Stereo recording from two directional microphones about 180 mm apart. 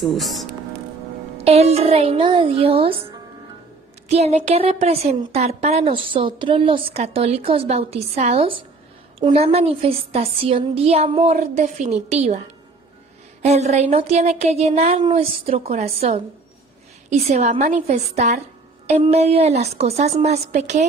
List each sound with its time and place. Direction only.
0.0 s speech: centre (ahead or behind)
1.4 s a woman's voice: 35° right (ahead or behind)
4.1 s a woman's voice: 40° right (ahead or behind)
13.4 s a woman's voice: 40° right (ahead or behind)